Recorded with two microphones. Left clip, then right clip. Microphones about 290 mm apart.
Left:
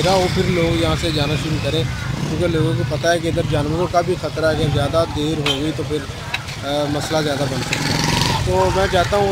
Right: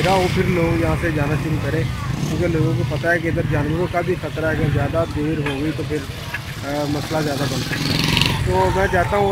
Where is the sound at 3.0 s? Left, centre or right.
Centre.